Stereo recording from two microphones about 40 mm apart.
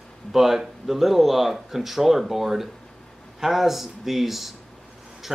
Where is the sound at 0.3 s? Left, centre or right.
Centre.